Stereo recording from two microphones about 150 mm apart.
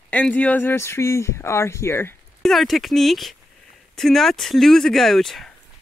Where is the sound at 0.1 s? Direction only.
10° left (ahead or behind).